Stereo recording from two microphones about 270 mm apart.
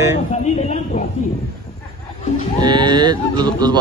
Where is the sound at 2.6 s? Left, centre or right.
Centre.